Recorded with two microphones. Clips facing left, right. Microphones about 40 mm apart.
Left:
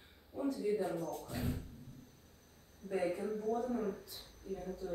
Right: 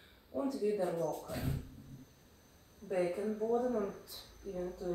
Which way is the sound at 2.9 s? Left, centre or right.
Centre.